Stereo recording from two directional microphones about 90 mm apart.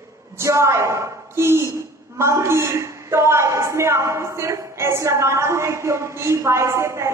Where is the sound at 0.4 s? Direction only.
35° right (ahead or behind).